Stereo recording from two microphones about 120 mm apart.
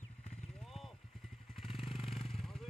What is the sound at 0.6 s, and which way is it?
Vehicle, centre (ahead or behind).